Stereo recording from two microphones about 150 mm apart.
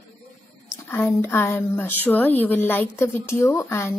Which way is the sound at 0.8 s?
15° left (ahead or behind).